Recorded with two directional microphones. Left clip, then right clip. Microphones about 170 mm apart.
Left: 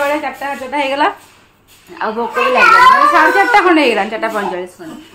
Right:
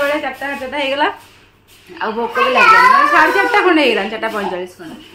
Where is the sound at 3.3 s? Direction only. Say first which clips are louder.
Left 3 dB; 25° left (ahead or behind).